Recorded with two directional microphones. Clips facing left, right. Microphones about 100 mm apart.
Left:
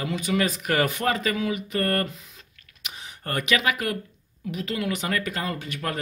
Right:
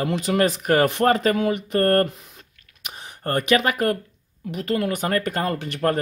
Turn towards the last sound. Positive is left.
turn(degrees=-55)  # may be behind; listen again after turning